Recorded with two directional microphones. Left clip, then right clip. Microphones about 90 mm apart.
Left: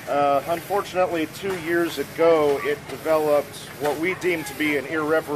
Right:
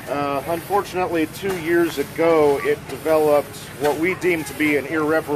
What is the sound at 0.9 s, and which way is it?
Speech, 30° left (ahead or behind).